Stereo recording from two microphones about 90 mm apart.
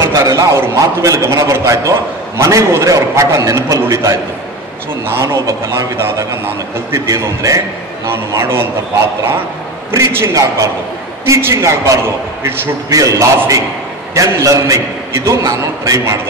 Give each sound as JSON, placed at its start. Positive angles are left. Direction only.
{"t": 0.0, "sound": "a man's voice", "side_deg": -35}
{"t": 7.1, "sound": "a man's voice", "side_deg": -35}
{"t": 9.8, "sound": "a man's voice", "side_deg": -30}